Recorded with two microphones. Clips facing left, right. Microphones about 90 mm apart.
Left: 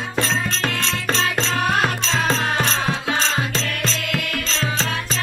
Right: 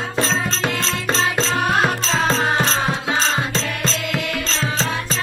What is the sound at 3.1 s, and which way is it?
Music, 35° right (ahead or behind).